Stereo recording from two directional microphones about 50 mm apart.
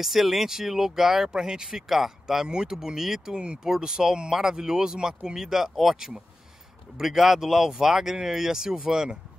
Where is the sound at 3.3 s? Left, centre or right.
Centre.